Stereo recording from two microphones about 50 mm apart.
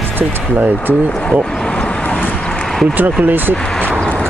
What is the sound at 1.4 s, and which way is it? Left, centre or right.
Vehicle, centre.